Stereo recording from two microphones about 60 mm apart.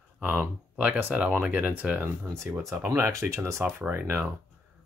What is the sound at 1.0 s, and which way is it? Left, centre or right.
Speech, right.